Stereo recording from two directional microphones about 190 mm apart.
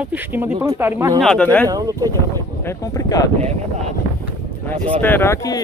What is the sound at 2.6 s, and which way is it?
Speech, 15° left (ahead or behind).